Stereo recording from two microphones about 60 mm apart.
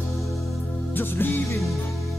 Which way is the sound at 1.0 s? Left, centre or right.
Left.